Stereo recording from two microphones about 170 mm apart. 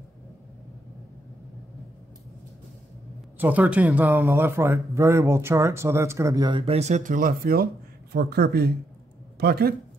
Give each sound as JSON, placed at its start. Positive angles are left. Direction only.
{"t": 3.3, "sound": "a man's voice", "side_deg": -10}
{"t": 8.1, "sound": "speech", "side_deg": -75}